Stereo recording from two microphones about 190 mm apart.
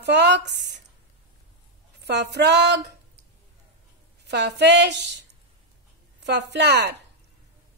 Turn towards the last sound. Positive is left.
turn(degrees=-60)  # may be behind; listen again after turning